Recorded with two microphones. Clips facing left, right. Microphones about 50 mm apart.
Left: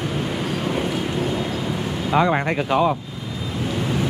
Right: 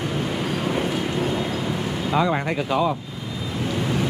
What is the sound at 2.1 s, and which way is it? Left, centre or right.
Speech, left.